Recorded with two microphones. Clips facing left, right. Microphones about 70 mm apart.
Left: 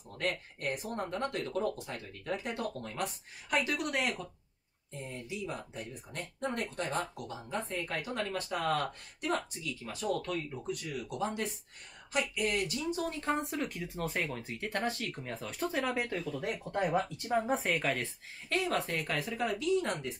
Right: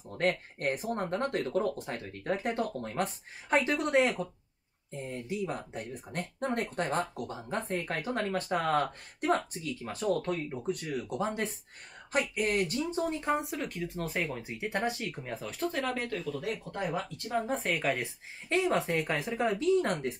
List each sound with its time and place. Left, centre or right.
0.2 s a woman's voice: right
5.2 s speech: right
12.9 s a woman's voice: right
13.4 s speech: centre; by 17.0 s left
17.3 s speech: centre
18.0 s a woman's voice: centre
19.9 s speech: right